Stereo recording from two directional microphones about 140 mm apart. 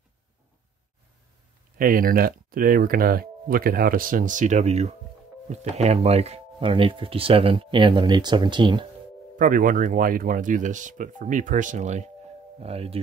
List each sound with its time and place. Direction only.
1.8 s speech: 90° right; by 8.8 s 35° right (ahead or behind)
9.4 s speech: 75° right (ahead or behind); by 12.1 s 55° right (ahead or behind)
12.5 s speech: 45° right (ahead or behind)